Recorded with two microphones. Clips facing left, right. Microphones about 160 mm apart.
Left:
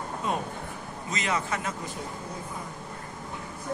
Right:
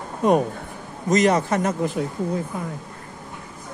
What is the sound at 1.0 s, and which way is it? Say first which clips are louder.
Speech: right 12 dB; 45° right (ahead or behind).